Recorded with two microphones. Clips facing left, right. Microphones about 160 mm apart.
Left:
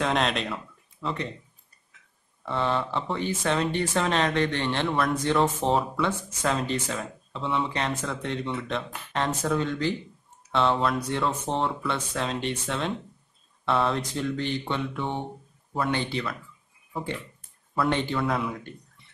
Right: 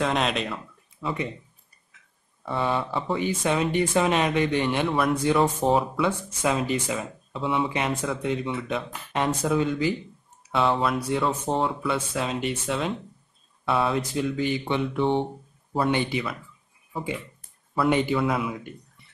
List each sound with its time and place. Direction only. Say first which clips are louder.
0.0 s speech: right 1 dB; centre (ahead or behind)
2.4 s speech: right 1 dB; 5° right (ahead or behind)
15.0 s speech: right 7 dB; 25° right (ahead or behind); by 18.8 s 5° right (ahead or behind)